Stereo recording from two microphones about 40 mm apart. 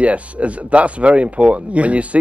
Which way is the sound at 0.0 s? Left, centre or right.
Right.